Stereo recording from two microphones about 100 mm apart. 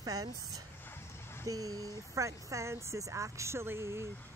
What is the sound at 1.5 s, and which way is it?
Speech, 35° right (ahead or behind).